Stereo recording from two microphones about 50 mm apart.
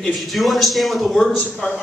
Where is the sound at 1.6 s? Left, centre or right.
Centre.